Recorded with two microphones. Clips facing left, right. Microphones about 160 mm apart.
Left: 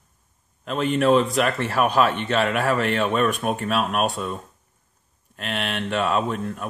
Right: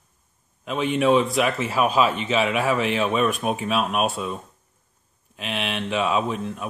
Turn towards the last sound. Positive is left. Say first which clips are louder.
# even
turn(degrees=0)  # may be behind; listen again after turning